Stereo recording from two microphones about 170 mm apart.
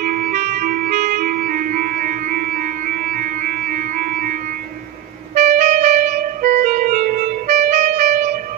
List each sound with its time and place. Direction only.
0.0 s clarinet: 55° right (ahead or behind)